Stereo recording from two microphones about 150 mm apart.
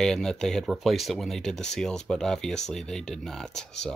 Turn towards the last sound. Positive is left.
turn(degrees=5)  # may be behind; listen again after turning